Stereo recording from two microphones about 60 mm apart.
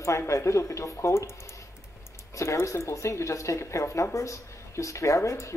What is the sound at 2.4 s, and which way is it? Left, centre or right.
Speech, left.